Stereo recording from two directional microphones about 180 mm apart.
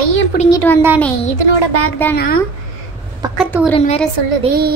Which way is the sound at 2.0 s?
10° left (ahead or behind).